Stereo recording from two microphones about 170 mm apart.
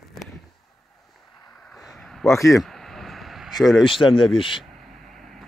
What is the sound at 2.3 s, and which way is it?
Speech, 20° left (ahead or behind).